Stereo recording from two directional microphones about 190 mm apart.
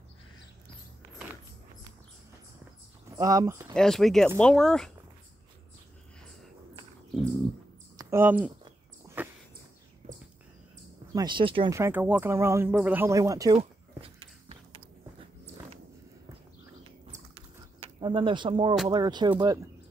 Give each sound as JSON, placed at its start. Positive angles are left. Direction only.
{"t": 3.1, "sound": "speech", "side_deg": -20}
{"t": 3.7, "sound": "speech", "side_deg": 0}
{"t": 8.0, "sound": "speech", "side_deg": -10}
{"t": 9.2, "sound": "a sound", "side_deg": -10}
{"t": 11.1, "sound": "speech", "side_deg": -25}
{"t": 11.7, "sound": "speech", "side_deg": -10}
{"t": 13.6, "sound": "a sound", "side_deg": -30}
{"t": 17.7, "sound": "speech", "side_deg": -30}